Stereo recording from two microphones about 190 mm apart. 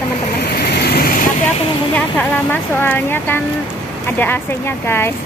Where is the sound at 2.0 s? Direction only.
5° left (ahead or behind).